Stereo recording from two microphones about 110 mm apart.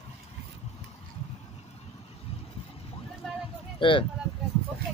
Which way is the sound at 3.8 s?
50° left (ahead or behind).